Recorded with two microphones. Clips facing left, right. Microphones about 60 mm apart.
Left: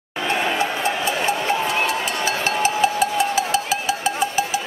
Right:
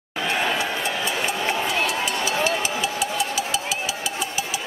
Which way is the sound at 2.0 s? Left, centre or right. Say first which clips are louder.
Left 1 dB; left.